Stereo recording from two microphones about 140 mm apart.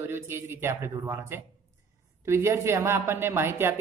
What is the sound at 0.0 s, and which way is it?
A woman's voice, 15° right (ahead or behind).